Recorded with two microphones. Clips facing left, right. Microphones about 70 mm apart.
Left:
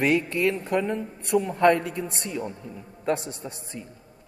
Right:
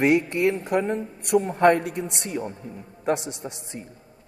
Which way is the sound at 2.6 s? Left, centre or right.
Right.